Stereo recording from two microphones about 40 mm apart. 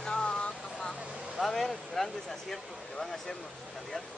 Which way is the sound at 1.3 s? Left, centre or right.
Centre.